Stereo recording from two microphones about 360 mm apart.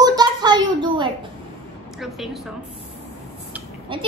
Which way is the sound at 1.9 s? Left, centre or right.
Centre.